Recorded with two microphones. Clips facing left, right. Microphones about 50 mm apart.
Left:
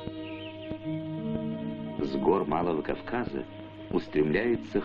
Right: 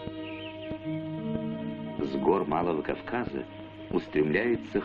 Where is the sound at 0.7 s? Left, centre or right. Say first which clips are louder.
Even; centre.